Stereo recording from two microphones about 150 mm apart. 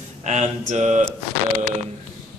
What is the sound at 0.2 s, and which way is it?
Speech, 50° right (ahead or behind).